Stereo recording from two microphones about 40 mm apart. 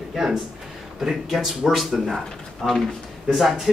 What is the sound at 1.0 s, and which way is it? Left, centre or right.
Speech, centre.